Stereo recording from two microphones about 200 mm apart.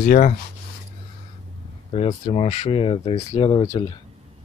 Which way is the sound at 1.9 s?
30° left (ahead or behind).